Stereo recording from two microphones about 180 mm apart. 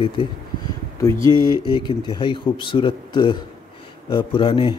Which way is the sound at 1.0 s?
15° left (ahead or behind).